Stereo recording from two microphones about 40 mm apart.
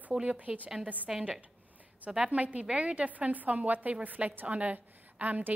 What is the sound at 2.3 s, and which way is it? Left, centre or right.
Speech, right.